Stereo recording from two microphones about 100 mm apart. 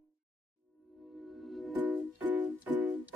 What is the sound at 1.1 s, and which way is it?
Music, centre (ahead or behind).